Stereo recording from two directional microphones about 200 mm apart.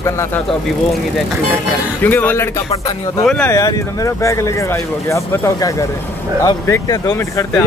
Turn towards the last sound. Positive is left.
turn(degrees=15)  # may be behind; listen again after turning